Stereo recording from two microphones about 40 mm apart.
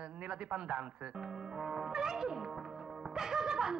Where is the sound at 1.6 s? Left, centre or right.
Centre.